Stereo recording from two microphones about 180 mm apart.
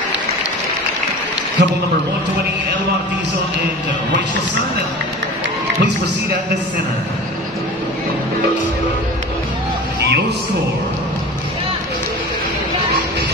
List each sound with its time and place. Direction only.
1.6 s a man's voice: 70° right (ahead or behind)